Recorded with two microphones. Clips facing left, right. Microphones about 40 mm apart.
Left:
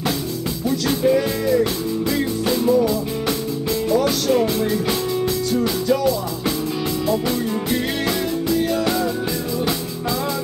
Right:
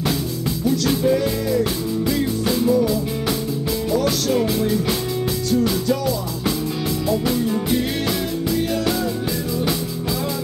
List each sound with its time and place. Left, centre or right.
0.7 s music: centre